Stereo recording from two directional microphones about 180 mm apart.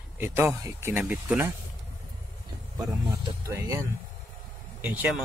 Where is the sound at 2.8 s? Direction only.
20° right (ahead or behind).